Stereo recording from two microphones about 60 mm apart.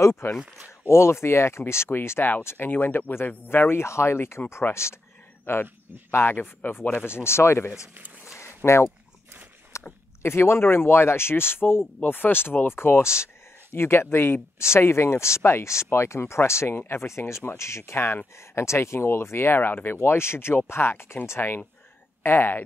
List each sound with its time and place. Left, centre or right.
0.0 s speech: left
5.5 s speech: left
9.7 s biting: left
10.2 s speech: left